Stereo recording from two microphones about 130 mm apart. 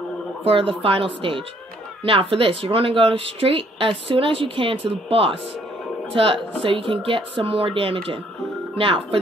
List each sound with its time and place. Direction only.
0.5 s speech: 45° right (ahead or behind)